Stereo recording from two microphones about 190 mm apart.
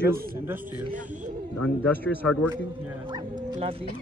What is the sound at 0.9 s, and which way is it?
Speech, 40° right (ahead or behind).